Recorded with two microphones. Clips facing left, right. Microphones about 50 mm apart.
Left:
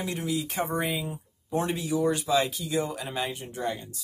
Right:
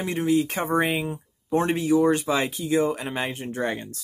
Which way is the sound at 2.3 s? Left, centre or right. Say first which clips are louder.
Right 2 dB; right.